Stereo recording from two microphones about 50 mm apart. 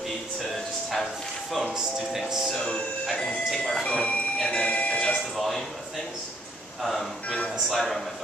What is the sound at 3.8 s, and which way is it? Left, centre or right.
Speech, centre.